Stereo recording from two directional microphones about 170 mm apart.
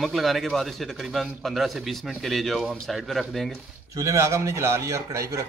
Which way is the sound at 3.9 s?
20° right (ahead or behind).